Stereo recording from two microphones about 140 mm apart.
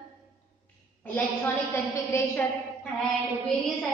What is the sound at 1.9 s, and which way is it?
Speech, 20° left (ahead or behind).